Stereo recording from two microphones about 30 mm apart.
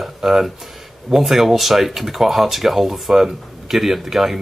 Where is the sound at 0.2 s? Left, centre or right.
Centre.